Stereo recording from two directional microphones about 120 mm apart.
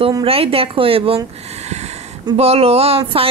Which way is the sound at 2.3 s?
55° right (ahead or behind).